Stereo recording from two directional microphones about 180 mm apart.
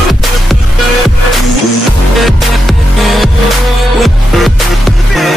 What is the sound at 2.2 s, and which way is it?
Music, centre (ahead or behind).